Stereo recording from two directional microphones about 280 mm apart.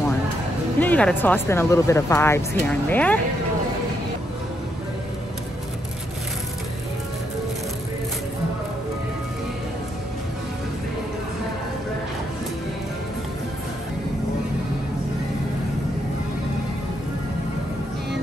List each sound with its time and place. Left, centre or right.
0.7 s speech: centre